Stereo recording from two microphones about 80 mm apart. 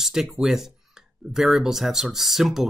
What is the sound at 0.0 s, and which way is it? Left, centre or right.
Speech, centre.